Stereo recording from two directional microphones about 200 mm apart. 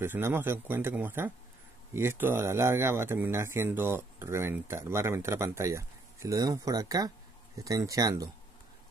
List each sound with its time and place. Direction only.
0.0 s speech: 10° right (ahead or behind)